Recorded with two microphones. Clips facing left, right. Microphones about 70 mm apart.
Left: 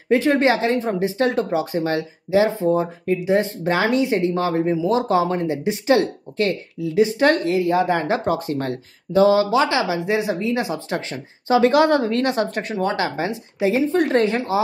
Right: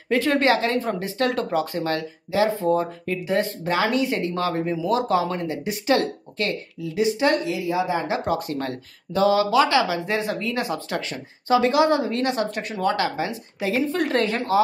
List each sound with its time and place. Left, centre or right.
0.1 s a woman's voice: left
8.3 s speech: left
12.7 s speech: left